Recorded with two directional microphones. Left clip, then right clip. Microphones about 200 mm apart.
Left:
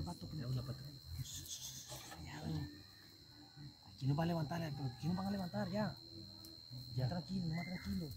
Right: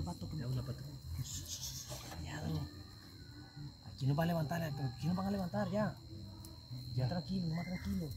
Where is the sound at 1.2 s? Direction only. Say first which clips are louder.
Right 4 dB; 10° right (ahead or behind).